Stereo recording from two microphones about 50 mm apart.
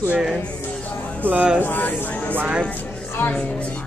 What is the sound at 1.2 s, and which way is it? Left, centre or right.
Speech, right.